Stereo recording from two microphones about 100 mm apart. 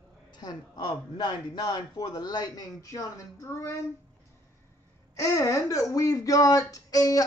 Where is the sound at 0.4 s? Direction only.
45° left (ahead or behind); by 3.7 s 30° left (ahead or behind).